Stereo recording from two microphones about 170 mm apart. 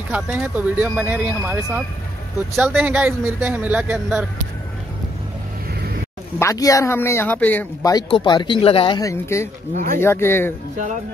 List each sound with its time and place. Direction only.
0.1 s speech: 10° right (ahead or behind)
6.4 s speech: 20° left (ahead or behind)
7.8 s speech: 25° left (ahead or behind)
9.0 s speech: 15° left (ahead or behind)